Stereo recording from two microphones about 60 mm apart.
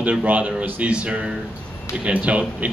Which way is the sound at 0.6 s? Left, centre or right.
Right.